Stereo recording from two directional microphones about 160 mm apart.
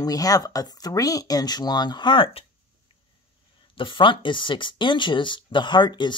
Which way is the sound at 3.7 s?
30° left (ahead or behind).